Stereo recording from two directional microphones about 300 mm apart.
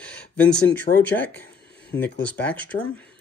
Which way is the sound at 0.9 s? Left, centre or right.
Left.